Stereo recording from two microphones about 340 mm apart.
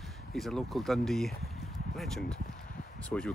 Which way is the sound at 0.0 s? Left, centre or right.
Centre.